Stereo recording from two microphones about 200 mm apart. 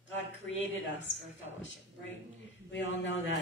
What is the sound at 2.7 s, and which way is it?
Speech, 65° left (ahead or behind).